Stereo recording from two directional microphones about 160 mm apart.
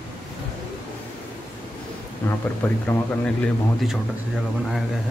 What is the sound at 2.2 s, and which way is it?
Speech, 10° left (ahead or behind).